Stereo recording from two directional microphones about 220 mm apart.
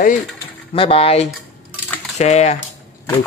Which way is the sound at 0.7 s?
25° left (ahead or behind).